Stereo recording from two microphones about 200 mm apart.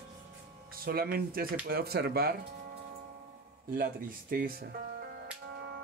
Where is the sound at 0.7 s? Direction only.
50° right (ahead or behind).